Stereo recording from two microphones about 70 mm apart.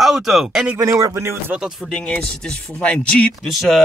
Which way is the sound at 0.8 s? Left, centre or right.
Right.